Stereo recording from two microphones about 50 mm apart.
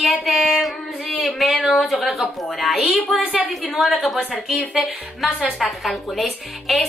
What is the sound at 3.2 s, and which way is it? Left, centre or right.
Speech, right.